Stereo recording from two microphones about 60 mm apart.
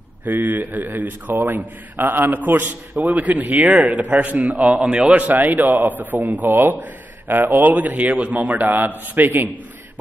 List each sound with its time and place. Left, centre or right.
0.2 s a man's voice: right